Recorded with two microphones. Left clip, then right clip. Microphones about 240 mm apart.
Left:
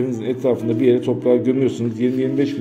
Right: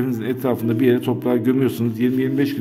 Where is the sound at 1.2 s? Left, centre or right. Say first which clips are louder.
Left 4 dB; right.